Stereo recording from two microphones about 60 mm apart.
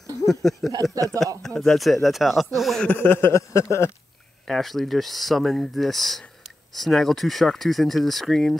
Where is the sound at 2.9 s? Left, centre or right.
Left.